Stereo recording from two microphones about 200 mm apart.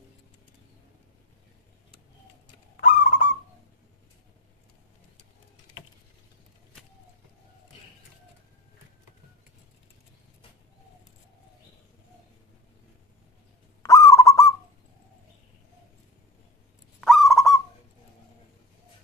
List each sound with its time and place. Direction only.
2.8 s owl: 40° left (ahead or behind)
13.8 s owl: 15° left (ahead or behind)
17.0 s owl: centre (ahead or behind)